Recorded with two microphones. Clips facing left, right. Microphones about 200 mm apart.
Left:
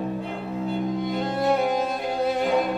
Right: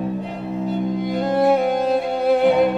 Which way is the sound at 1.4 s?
Centre (ahead or behind).